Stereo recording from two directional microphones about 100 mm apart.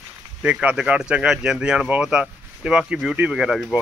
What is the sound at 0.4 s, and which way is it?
Speech, 10° right (ahead or behind).